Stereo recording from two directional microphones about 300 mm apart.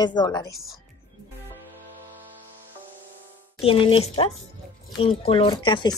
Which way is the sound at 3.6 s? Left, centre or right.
Centre.